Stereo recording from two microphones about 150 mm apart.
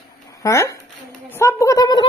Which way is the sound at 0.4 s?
20° left (ahead or behind).